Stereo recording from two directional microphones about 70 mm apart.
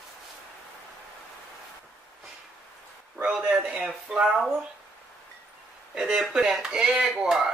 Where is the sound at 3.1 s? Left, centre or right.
Centre.